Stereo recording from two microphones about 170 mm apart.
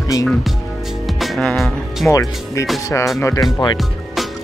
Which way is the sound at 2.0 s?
20° left (ahead or behind).